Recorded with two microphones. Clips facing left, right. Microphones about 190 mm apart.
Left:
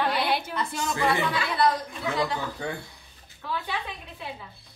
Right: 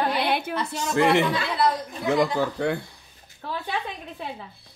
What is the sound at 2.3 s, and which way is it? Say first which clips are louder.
Speech: right 8 dB; 70° right (ahead or behind).